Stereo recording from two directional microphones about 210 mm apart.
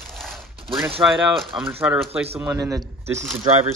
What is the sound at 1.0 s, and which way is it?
Speech, centre (ahead or behind).